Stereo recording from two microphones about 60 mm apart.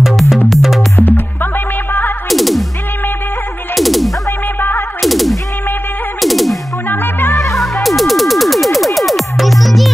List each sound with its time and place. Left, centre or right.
0.0 s music: centre
0.9 s music: left
2.2 s music: centre
3.7 s music: centre
6.9 s music: left
7.5 s music: centre